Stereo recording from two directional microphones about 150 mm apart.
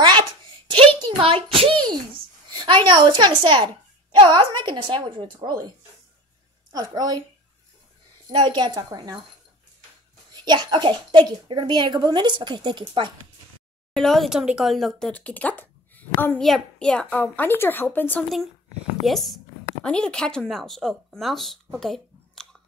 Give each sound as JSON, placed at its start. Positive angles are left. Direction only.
{"t": 0.0, "sound": "a sound", "side_deg": -30}
{"t": 2.5, "sound": "a child's voice", "side_deg": -35}
{"t": 6.7, "sound": "a woman's voice", "side_deg": -25}
{"t": 8.3, "sound": "a child's voice", "side_deg": -30}
{"t": 10.3, "sound": "a child's voice", "side_deg": -30}
{"t": 13.9, "sound": "a woman's voice", "side_deg": 0}
{"t": 19.0, "sound": "speech", "side_deg": 0}